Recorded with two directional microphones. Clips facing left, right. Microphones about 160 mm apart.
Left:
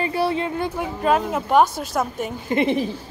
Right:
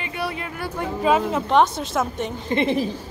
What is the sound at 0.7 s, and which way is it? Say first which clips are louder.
A woman's voice: right 2 dB; centre (ahead or behind).